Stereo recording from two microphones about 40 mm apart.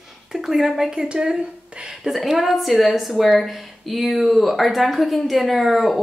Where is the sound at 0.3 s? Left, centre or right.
Centre.